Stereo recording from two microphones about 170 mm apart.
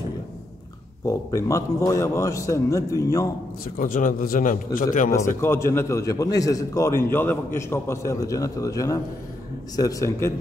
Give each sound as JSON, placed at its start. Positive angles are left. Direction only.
{"t": 1.0, "sound": "a man's voice", "side_deg": 20}
{"t": 3.7, "sound": "a man's voice", "side_deg": 50}
{"t": 5.4, "sound": "a man's voice", "side_deg": 15}